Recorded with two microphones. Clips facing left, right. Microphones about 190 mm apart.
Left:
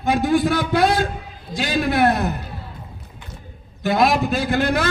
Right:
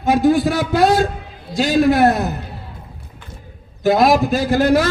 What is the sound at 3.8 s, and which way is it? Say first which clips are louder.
A man's voice: right 4 dB; 45° right (ahead or behind).